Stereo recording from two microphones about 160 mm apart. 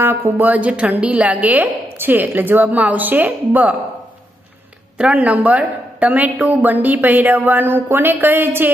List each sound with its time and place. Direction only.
0.0 s a woman's voice: 15° right (ahead or behind)
4.9 s a woman's voice: 5° right (ahead or behind)